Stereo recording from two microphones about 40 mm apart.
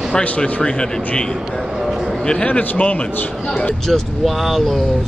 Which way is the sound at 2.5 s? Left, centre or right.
Left.